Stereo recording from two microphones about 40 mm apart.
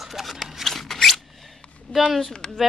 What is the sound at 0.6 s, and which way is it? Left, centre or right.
Scissors, centre.